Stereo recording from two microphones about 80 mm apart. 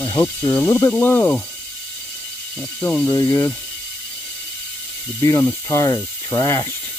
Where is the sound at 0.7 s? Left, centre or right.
Left.